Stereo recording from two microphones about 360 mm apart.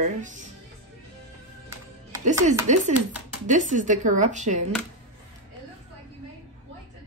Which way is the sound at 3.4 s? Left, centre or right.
Right.